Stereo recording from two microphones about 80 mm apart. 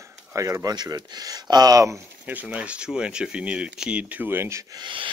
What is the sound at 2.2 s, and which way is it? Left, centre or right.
Speech, centre.